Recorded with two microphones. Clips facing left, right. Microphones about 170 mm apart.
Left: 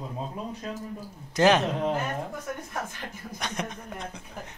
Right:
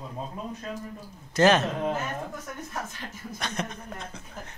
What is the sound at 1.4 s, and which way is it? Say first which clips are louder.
Speech: even; 15° left (ahead or behind).